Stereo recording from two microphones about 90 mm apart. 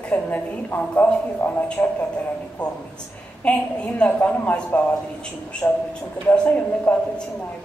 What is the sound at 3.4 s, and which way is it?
A man's voice, 15° left (ahead or behind).